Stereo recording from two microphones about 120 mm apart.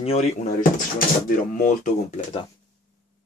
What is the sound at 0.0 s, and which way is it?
Speech, 60° left (ahead or behind).